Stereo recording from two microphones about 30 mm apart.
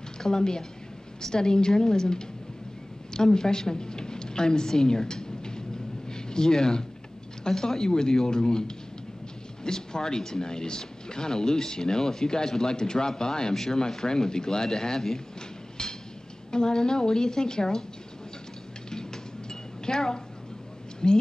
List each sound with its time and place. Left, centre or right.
0.2 s a woman's voice: left
15.8 s a sound: left
16.5 s speech: left
19.9 s speech: left